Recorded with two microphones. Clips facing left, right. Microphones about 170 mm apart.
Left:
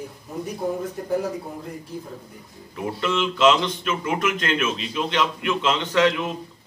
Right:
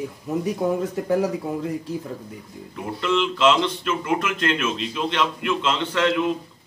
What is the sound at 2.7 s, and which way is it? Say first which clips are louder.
Speech: right 1 dB; centre (ahead or behind).